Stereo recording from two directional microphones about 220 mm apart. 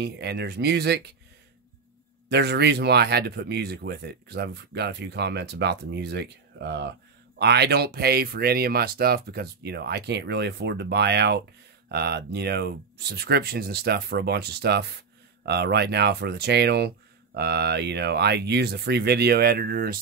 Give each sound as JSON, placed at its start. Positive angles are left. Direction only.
{"t": 0.0, "sound": "speech", "side_deg": -50}
{"t": 2.2, "sound": "speech", "side_deg": -50}